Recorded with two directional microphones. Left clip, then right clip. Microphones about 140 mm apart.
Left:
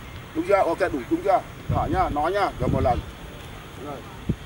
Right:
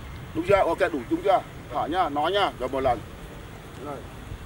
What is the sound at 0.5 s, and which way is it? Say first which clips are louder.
Speech: even; 20° right (ahead or behind).